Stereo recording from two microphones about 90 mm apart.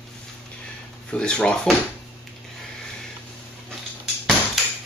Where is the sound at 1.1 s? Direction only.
10° left (ahead or behind).